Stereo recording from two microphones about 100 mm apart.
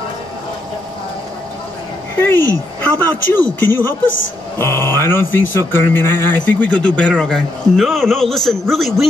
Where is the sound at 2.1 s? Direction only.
20° left (ahead or behind).